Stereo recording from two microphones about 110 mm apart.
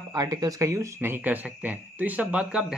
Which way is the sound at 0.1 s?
35° right (ahead or behind).